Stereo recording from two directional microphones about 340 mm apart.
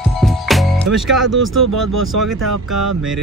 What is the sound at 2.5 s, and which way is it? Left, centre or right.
Speech, right.